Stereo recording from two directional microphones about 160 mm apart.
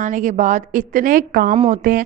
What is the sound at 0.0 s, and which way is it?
A woman's voice, 50° right (ahead or behind).